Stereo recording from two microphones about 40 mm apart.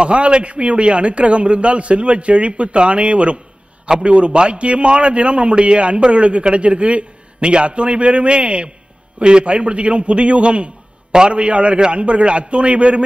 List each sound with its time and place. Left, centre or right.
0.0 s a man's voice: right
11.1 s a man's voice: centre
11.3 s a man's voice: right